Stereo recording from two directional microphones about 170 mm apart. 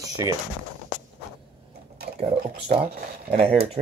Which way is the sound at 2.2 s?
40° right (ahead or behind).